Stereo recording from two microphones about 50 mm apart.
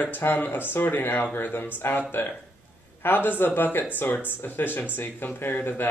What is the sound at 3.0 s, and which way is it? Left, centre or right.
Speech, left.